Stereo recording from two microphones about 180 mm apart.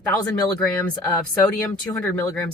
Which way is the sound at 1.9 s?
10° left (ahead or behind).